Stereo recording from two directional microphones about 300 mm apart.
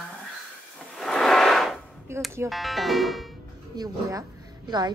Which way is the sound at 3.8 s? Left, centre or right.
Centre.